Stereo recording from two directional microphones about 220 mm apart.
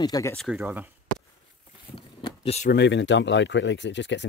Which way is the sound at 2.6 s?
50° left (ahead or behind).